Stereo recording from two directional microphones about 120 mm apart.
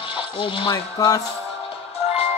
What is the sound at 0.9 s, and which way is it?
Speech, 30° left (ahead or behind).